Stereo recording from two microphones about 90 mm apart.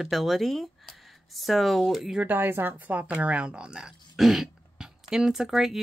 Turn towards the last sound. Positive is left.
turn(degrees=-5)  # may be behind; listen again after turning